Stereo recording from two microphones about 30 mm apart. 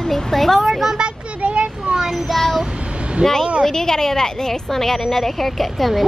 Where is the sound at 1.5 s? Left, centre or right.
Right.